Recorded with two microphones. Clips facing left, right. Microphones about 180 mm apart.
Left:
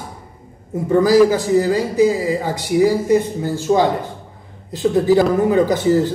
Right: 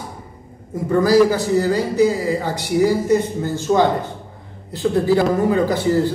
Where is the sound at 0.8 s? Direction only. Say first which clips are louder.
Left 2 dB; 15° left (ahead or behind).